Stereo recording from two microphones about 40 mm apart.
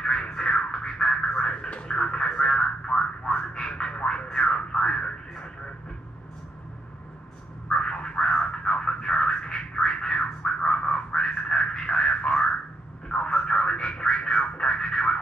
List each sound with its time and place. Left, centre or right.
0.0 s music: centre
2.0 s a sound: left
7.7 s music: left